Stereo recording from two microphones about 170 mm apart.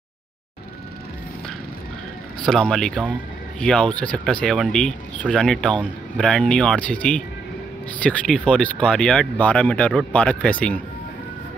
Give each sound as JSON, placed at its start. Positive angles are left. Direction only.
{"t": 2.4, "sound": "speech", "side_deg": 5}